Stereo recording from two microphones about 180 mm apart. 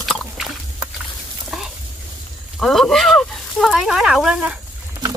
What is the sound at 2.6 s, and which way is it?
Speech, centre (ahead or behind).